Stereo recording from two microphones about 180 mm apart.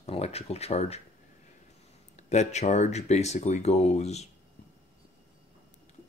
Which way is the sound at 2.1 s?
40° left (ahead or behind).